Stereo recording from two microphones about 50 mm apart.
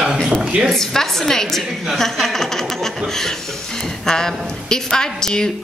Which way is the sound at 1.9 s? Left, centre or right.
Centre.